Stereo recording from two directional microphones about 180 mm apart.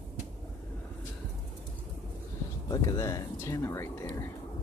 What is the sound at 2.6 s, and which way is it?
Speech, 15° left (ahead or behind).